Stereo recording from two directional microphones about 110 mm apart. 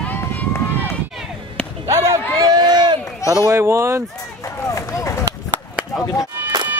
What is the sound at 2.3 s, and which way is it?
Run, 35° right (ahead or behind).